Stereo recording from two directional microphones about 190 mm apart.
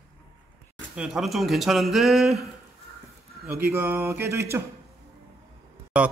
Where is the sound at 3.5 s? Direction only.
10° right (ahead or behind).